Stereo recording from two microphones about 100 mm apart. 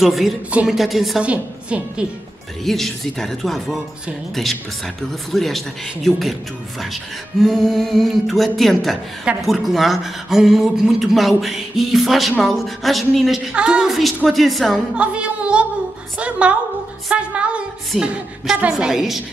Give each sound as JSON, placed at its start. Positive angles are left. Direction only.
{"t": 0.0, "sound": "speech", "side_deg": 0}
{"t": 0.5, "sound": "a woman's voice", "side_deg": -15}
{"t": 0.7, "sound": "speech", "side_deg": 0}
{"t": 1.2, "sound": "a woman's voice", "side_deg": -10}
{"t": 2.6, "sound": "speech", "side_deg": 0}
{"t": 5.3, "sound": "speech", "side_deg": 0}
{"t": 7.4, "sound": "speech", "side_deg": 0}
{"t": 15.0, "sound": "a woman's voice", "side_deg": -10}